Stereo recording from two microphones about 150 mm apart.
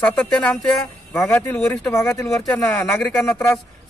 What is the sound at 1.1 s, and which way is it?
A man's voice, 15° left (ahead or behind).